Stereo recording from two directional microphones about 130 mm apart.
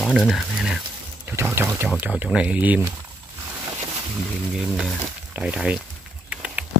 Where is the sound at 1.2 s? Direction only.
15° right (ahead or behind).